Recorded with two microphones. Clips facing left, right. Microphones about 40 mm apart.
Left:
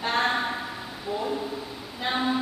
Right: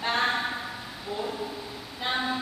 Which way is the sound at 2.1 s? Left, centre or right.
Centre.